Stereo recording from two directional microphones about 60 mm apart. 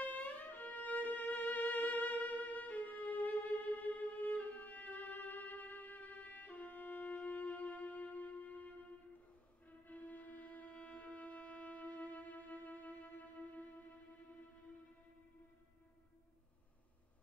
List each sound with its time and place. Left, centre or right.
0.0 s violin: left
9.8 s music: left